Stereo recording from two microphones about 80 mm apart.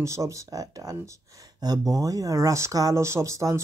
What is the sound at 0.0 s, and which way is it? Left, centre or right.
Speech, right.